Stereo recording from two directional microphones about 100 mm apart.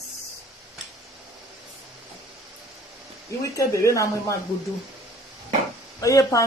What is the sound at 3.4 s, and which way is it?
Speech, 35° left (ahead or behind).